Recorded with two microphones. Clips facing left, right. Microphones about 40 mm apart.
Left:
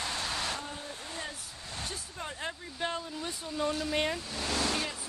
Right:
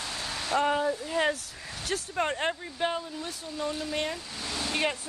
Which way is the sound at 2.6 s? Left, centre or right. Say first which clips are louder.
Right 5 dB; right.